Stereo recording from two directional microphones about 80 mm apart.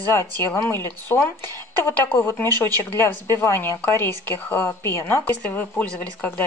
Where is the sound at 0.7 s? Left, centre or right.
Left.